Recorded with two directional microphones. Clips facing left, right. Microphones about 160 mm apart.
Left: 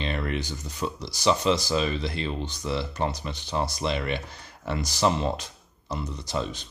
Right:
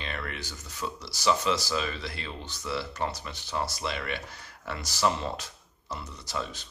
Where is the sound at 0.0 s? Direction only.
20° left (ahead or behind).